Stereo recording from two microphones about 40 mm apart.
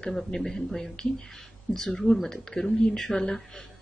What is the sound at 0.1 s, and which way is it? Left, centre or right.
Speech, centre.